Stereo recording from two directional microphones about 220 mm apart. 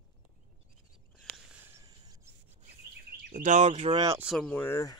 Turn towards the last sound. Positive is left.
turn(degrees=10)  # may be behind; listen again after turning